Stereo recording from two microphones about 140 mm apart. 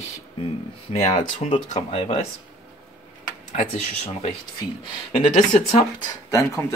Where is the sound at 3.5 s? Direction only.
55° left (ahead or behind).